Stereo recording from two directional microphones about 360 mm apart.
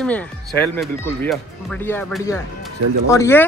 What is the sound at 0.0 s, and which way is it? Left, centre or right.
Speech, centre.